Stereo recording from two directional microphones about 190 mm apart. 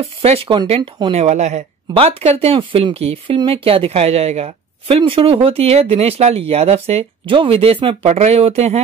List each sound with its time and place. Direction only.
0.0 s speech: 30° right (ahead or behind)